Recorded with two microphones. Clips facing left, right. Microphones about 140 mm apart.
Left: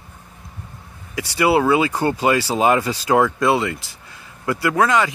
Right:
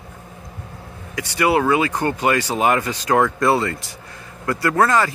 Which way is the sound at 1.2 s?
25° left (ahead or behind).